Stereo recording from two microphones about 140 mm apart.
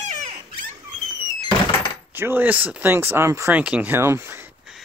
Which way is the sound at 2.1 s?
15° right (ahead or behind).